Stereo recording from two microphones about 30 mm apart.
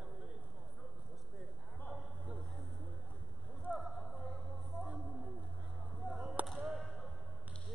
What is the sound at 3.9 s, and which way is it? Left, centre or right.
Music, centre.